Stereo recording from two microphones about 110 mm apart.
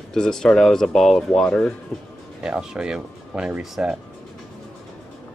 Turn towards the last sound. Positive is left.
turn(degrees=-5)  # may be behind; listen again after turning